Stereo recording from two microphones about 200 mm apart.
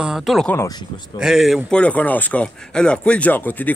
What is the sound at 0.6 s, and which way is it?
Speech, 20° left (ahead or behind).